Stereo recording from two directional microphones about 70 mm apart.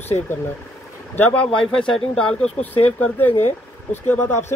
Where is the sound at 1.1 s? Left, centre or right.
Left.